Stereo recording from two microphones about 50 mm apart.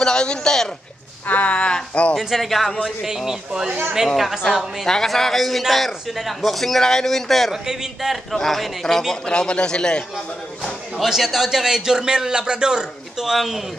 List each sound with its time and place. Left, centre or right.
0.0 s a man's voice: centre
1.2 s speech: left
2.1 s a man's voice: centre
2.8 s a man's voice: centre
4.4 s a man's voice: centre
7.6 s a man's voice: centre
8.1 s a man's voice: centre
11.1 s a man's voice: centre